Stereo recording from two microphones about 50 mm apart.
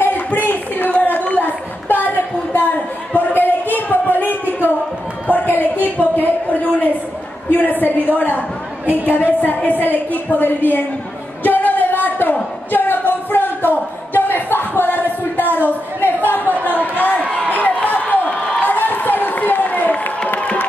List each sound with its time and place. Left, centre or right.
0.0 s a sound: left
3.6 s music: left
5.6 s a woman's voice: left
8.8 s a woman's voice: right
9.1 s a woman's voice: left
11.4 s a sound: left